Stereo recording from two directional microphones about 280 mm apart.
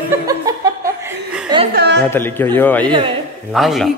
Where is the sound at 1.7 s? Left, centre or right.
Right.